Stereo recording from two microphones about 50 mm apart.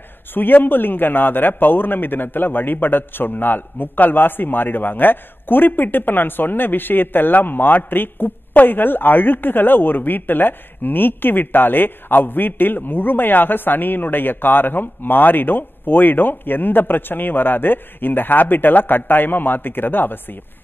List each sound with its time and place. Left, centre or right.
0.3 s a man's voice: left